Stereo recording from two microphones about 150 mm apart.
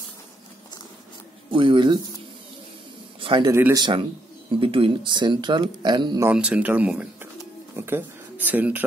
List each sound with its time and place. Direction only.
1.5 s speech: 35° right (ahead or behind)
3.2 s a man's voice: 35° right (ahead or behind)
6.3 s speech: 5° right (ahead or behind)